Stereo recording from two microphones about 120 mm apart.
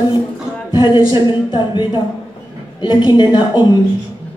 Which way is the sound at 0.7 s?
40° left (ahead or behind).